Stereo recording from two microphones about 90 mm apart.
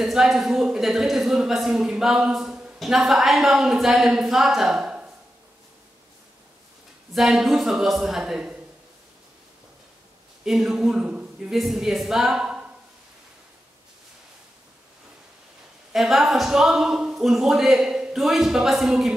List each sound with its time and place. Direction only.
0.0 s speech: 5° right (ahead or behind)
7.2 s speech: 5° right (ahead or behind)
10.4 s speech: 5° right (ahead or behind)
11.5 s a woman's voice: centre (ahead or behind)
15.9 s speech: centre (ahead or behind)